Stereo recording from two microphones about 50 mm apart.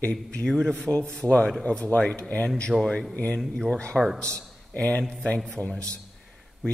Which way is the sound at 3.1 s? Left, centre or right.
Left.